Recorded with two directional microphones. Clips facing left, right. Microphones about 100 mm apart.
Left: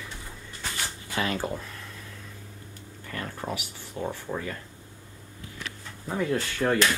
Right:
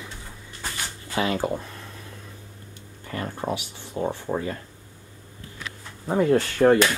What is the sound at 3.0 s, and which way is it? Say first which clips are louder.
Speech: right 5 dB; 25° right (ahead or behind).